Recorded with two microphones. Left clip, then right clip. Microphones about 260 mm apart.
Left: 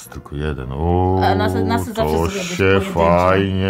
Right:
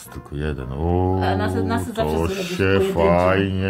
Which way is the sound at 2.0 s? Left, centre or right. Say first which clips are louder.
Left 3 dB; centre.